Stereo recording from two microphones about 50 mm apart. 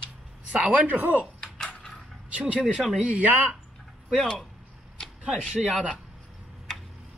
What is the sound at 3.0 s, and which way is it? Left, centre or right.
Speech, right.